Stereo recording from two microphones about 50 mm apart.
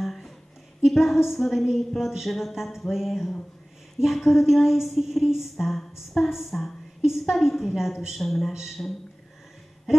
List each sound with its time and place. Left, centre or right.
0.0 s a sound: centre
0.8 s a woman's voice: centre
8.8 s speech: left